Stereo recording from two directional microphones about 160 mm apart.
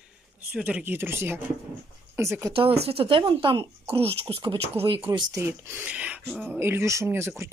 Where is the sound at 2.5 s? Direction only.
35° right (ahead or behind).